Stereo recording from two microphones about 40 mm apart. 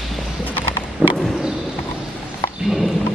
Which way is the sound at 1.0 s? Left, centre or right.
Right.